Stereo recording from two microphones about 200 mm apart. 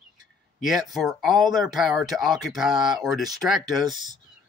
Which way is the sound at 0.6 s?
Centre (ahead or behind).